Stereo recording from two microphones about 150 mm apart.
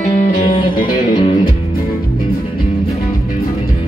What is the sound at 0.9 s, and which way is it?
Music, 30° left (ahead or behind).